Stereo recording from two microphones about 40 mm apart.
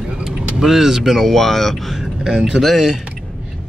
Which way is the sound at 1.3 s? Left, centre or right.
Centre.